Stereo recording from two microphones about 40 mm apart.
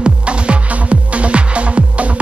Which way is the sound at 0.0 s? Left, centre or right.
Right.